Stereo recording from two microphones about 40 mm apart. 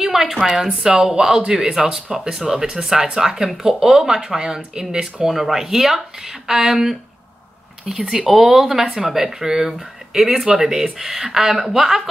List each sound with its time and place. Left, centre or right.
0.0 s a sound: centre
0.4 s speech: centre
0.8 s speech: centre
8.1 s speech: centre